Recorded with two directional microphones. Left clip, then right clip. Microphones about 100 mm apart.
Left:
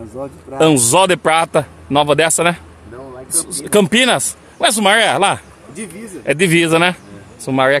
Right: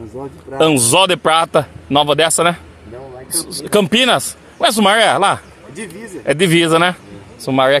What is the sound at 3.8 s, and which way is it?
Speech, 15° left (ahead or behind).